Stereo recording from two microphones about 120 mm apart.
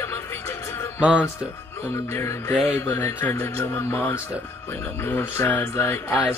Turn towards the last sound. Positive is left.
turn(degrees=20)  # may be behind; listen again after turning